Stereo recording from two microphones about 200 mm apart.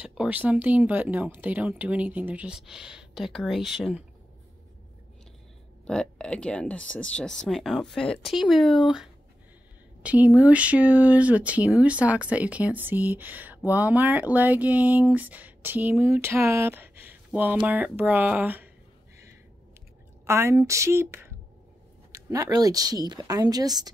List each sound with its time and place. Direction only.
0.0 s speech: 5° right (ahead or behind)
5.9 s speech: 5° left (ahead or behind)
20.2 s speech: 10° right (ahead or behind)